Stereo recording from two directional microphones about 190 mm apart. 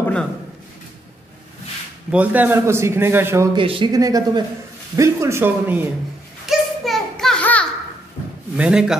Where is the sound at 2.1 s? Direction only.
10° right (ahead or behind).